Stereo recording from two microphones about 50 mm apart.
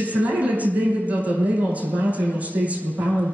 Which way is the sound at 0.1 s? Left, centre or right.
Right.